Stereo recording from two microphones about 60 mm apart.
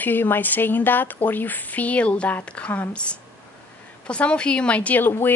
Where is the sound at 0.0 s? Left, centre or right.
Left.